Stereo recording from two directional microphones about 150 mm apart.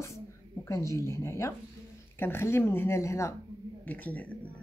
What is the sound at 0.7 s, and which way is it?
A woman's voice, 20° left (ahead or behind).